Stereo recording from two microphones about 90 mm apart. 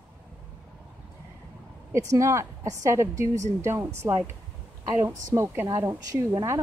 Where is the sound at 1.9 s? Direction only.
35° right (ahead or behind).